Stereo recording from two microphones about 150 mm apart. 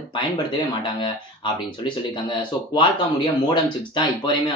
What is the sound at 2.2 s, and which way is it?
A man's voice, 30° left (ahead or behind).